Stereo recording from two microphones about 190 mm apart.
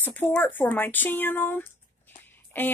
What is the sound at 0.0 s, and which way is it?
Speech, 10° left (ahead or behind).